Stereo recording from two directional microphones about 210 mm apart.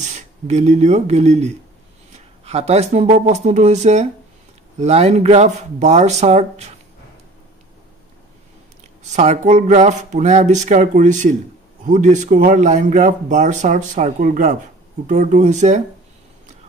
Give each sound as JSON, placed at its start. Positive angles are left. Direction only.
{"t": 0.0, "sound": "speech", "side_deg": -35}
{"t": 9.0, "sound": "speech", "side_deg": -35}